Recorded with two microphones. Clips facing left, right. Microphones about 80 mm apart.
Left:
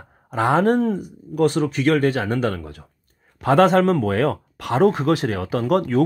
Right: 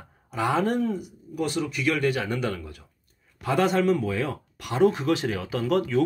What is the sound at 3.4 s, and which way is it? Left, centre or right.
A man's voice, left.